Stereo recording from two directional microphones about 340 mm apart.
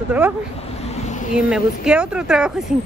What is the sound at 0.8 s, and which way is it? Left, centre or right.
Vehicle, centre.